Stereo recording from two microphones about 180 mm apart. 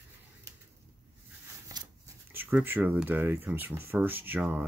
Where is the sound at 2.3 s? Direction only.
10° right (ahead or behind).